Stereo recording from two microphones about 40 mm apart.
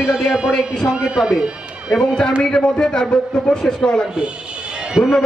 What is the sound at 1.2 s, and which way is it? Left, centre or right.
Speech, right.